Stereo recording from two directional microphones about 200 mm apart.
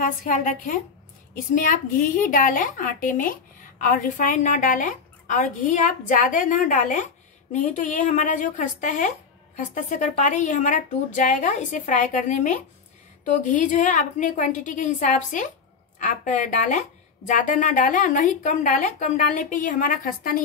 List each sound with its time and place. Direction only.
0.0 s a woman's voice: 40° left (ahead or behind)